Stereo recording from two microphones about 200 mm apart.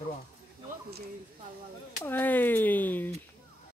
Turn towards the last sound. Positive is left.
turn(degrees=10)  # may be behind; listen again after turning